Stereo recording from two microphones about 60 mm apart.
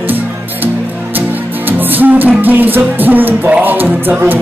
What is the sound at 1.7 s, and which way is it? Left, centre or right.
Music, right.